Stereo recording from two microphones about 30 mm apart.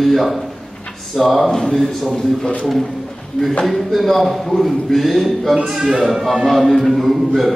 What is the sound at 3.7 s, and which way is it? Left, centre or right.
A man's voice, centre.